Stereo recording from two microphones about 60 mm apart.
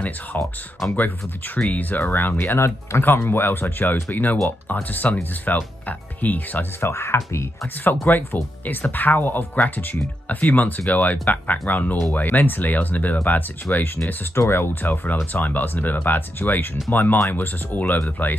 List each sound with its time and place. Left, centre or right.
0.9 s speech: left
6.8 s speech: left
8.1 s speech: left
14.3 s speech: left